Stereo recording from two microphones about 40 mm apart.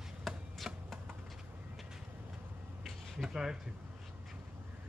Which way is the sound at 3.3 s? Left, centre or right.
Centre.